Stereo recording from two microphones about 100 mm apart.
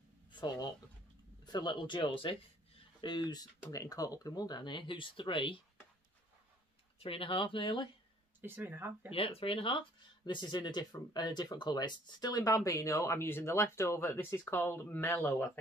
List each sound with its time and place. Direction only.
0.3 s speech: 50° left (ahead or behind)
7.0 s speech: 65° left (ahead or behind)
8.4 s speech: 20° right (ahead or behind)
9.1 s speech: 65° left (ahead or behind)
10.2 s speech: 50° left (ahead or behind); by 15.6 s 20° left (ahead or behind)